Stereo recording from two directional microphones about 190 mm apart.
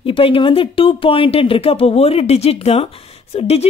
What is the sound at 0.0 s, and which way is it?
A woman's voice, 30° left (ahead or behind).